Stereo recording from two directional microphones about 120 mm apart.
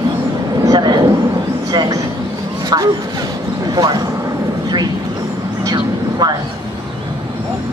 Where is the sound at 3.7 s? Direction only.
35° right (ahead or behind).